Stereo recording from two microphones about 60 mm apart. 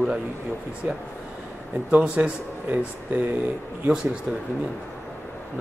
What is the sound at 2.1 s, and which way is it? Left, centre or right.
Speech, right.